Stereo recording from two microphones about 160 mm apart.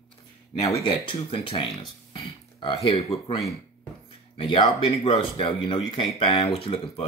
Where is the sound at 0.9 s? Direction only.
35° left (ahead or behind).